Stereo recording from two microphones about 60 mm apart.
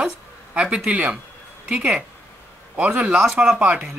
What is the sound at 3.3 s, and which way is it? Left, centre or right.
Speech, centre.